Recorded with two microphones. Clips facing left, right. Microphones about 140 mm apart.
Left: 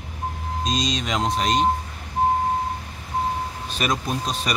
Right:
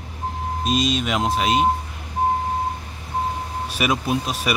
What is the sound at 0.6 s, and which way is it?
Speech, 5° right (ahead or behind).